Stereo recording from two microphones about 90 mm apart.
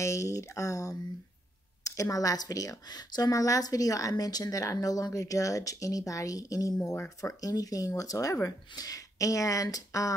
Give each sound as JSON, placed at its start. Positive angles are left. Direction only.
{"t": 0.0, "sound": "a woman's voice", "side_deg": 35}